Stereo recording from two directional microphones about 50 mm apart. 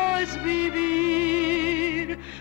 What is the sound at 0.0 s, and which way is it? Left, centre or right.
Music, right.